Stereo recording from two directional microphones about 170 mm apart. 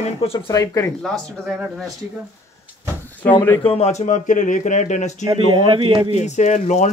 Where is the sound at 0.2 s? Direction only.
35° left (ahead or behind).